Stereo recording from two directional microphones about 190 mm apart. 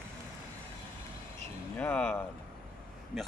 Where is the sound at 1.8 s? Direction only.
5° left (ahead or behind).